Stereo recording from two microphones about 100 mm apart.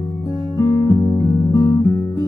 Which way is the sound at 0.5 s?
30° left (ahead or behind).